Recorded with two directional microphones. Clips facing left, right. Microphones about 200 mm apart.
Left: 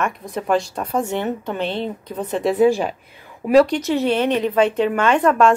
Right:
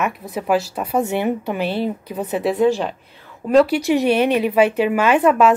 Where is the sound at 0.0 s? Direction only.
5° right (ahead or behind).